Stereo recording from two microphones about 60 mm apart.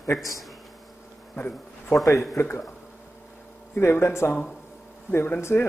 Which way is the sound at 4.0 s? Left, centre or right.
Left.